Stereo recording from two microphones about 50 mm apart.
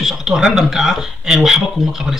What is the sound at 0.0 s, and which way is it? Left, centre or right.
Speech, centre.